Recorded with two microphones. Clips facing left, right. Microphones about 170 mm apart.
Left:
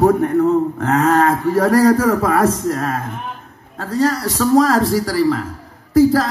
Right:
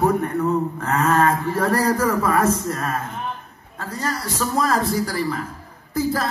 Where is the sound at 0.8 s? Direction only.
90° left.